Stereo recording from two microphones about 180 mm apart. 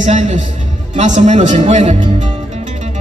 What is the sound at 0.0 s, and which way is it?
Speech, 40° right (ahead or behind).